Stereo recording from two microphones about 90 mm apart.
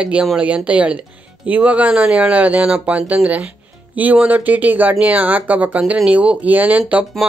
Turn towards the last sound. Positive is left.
turn(degrees=-15)  # may be behind; listen again after turning